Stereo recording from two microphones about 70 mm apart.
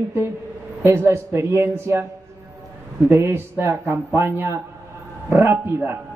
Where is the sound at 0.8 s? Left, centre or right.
Right.